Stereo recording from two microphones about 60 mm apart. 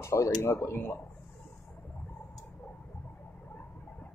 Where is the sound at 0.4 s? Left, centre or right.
Left.